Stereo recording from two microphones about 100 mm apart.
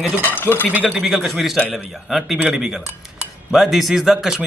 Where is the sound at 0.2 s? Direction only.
20° left (ahead or behind).